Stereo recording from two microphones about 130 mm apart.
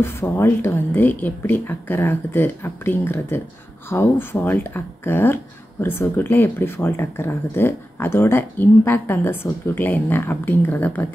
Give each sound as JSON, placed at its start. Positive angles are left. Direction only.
{"t": 0.0, "sound": "speech", "side_deg": 20}